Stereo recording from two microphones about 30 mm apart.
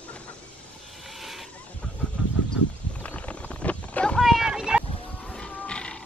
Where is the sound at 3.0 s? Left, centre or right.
Left.